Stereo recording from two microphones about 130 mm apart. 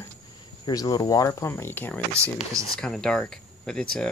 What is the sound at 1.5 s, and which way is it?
Speech, 15° left (ahead or behind).